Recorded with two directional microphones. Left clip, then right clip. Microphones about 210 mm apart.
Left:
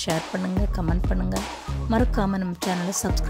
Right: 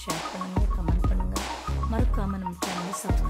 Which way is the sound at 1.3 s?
Centre (ahead or behind).